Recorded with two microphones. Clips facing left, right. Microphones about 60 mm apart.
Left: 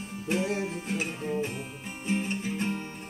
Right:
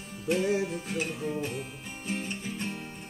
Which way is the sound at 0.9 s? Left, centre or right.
Centre.